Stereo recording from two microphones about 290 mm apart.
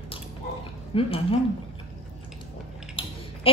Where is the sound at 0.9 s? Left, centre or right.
Centre.